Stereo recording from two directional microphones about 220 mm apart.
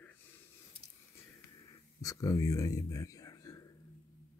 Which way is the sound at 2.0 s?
15° left (ahead or behind).